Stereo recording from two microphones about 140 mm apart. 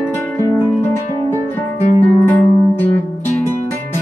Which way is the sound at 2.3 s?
10° left (ahead or behind).